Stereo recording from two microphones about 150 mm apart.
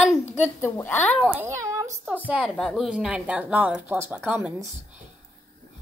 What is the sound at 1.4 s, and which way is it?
Speech, 20° right (ahead or behind).